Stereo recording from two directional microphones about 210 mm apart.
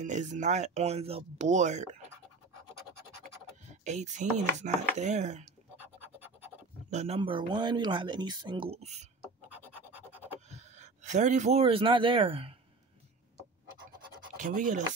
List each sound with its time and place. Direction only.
0.0 s speech: 35° right (ahead or behind)
3.8 s speech: 35° right (ahead or behind)
5.8 s scratch: 10° right (ahead or behind)
6.9 s speech: 30° right (ahead or behind)
10.5 s speech: 35° right (ahead or behind)
14.4 s speech: 40° right (ahead or behind)